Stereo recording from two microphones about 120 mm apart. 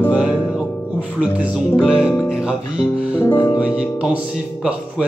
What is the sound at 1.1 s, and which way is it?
Speech, 10° right (ahead or behind).